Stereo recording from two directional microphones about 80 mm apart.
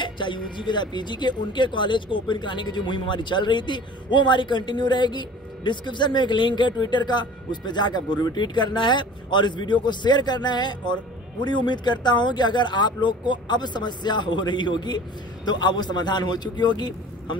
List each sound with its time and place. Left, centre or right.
0.0 s a man's voice: left